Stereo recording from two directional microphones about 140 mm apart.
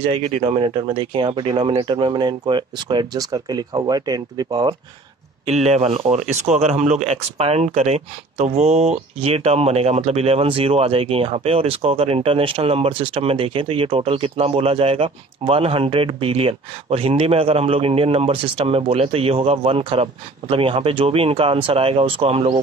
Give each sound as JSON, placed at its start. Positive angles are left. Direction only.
{"t": 0.1, "sound": "speech", "side_deg": -40}
{"t": 5.5, "sound": "speech", "side_deg": -50}